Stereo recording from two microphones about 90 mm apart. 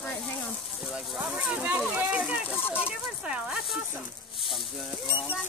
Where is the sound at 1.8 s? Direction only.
15° right (ahead or behind).